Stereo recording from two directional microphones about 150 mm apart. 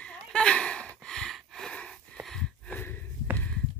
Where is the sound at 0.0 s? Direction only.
5° left (ahead or behind).